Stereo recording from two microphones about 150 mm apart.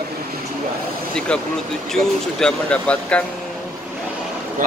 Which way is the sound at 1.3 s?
5° left (ahead or behind).